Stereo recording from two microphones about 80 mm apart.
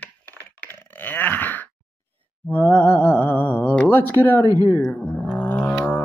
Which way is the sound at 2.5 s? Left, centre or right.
Left.